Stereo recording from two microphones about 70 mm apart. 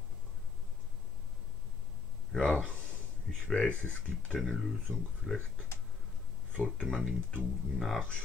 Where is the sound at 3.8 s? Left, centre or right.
Left.